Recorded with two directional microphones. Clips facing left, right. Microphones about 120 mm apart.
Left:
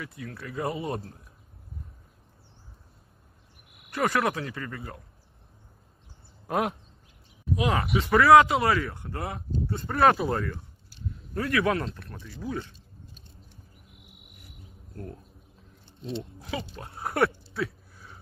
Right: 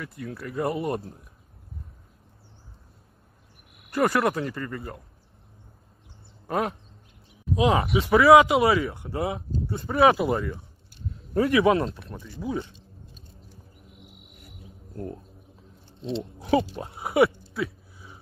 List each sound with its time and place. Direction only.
0.0 s speech: centre (ahead or behind)
3.9 s speech: 5° right (ahead or behind)
6.4 s speech: centre (ahead or behind)
7.5 s speech: 20° right (ahead or behind)
8.0 s a man's voice: 10° right (ahead or behind)
9.8 s speech: centre (ahead or behind)
11.3 s speech: 20° right (ahead or behind)
16.3 s pig: 25° right (ahead or behind)
16.9 s speech: 5° right (ahead or behind)
17.6 s a sound: centre (ahead or behind)